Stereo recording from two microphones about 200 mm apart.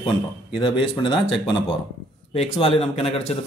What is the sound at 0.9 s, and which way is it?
Speech, 25° left (ahead or behind).